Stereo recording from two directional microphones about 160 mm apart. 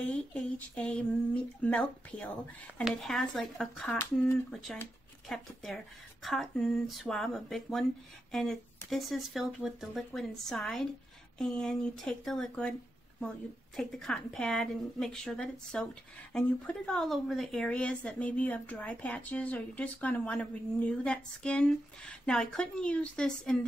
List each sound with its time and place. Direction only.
0.0 s a woman's voice: 10° left (ahead or behind)
13.7 s a woman's voice: 5° left (ahead or behind)